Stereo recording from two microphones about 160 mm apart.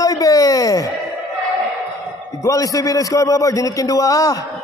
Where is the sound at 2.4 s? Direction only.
20° left (ahead or behind).